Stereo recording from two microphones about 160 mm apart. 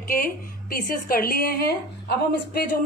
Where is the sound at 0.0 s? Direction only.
65° left (ahead or behind).